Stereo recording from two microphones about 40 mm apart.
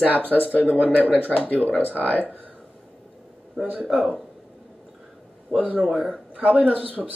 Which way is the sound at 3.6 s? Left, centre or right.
Right.